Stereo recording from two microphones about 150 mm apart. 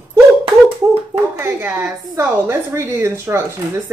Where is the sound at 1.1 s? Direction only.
15° right (ahead or behind).